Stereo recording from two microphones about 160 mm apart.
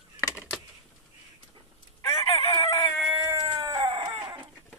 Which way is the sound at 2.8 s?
5° left (ahead or behind).